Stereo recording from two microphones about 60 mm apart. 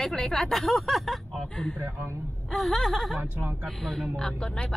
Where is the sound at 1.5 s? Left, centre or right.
Centre.